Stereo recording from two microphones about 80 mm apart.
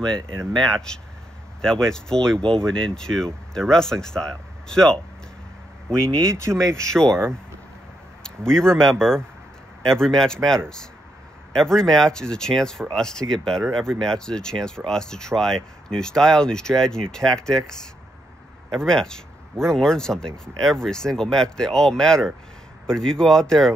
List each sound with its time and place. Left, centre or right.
0.6 s speech: centre
6.2 s speech: right
6.8 s speech: centre
8.2 s speech: centre